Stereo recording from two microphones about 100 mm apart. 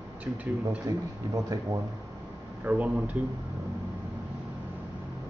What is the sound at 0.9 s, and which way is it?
Speech, 40° right (ahead or behind).